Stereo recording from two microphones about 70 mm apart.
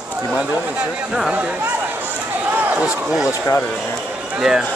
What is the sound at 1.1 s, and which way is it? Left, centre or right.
Speech, centre.